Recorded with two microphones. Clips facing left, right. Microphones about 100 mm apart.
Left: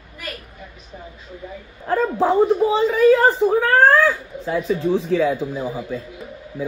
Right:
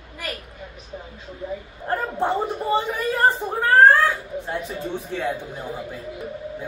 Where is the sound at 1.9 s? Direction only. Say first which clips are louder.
Left 5 dB; 90° left.